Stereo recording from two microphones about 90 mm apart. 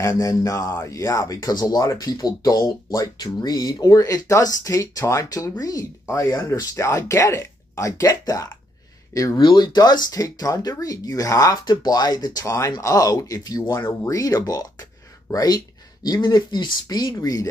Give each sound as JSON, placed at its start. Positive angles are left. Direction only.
{"t": 0.1, "sound": "speech", "side_deg": 40}
{"t": 9.4, "sound": "speech", "side_deg": 55}